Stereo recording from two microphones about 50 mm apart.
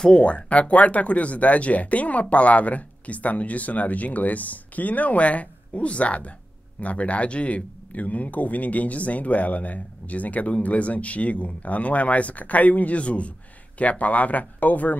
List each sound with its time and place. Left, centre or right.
0.0 s speech: left